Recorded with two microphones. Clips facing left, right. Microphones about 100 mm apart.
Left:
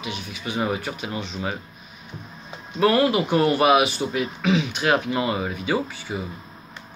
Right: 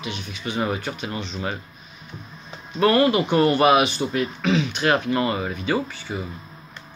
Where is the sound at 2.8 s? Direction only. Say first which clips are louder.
Right 1 dB; 5° left (ahead or behind).